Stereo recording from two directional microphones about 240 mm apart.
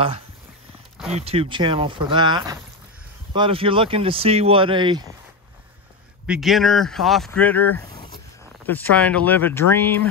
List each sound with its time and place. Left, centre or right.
1.1 s speech: right
6.2 s speech: centre